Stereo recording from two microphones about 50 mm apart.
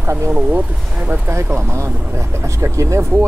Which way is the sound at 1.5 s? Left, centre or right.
Right.